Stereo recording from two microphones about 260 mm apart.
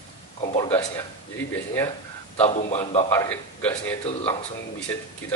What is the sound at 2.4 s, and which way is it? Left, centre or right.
Speech, left.